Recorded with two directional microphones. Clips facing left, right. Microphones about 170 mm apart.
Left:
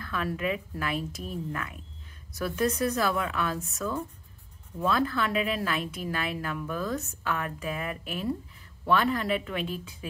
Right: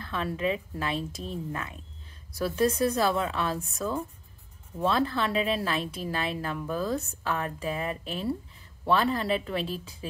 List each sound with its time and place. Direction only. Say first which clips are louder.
0.0 s a woman's voice: right 1 dB; 25° right (ahead or behind)